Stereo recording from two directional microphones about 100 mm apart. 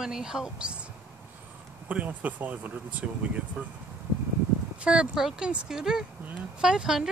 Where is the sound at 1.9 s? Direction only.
15° right (ahead or behind).